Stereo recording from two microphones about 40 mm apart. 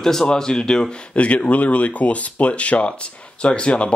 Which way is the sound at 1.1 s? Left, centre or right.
Left.